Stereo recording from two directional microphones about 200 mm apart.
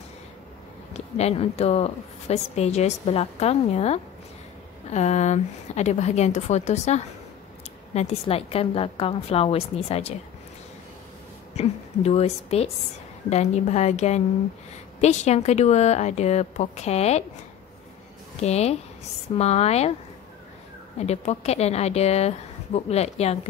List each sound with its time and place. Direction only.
0.9 s a woman's voice: 30° left (ahead or behind)
11.5 s a woman's voice: 30° left (ahead or behind)
18.4 s a woman's voice: 30° left (ahead or behind)
21.0 s a woman's voice: 35° left (ahead or behind)